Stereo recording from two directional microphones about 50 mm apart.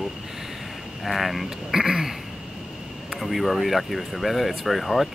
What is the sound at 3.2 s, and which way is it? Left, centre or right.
Speech, centre.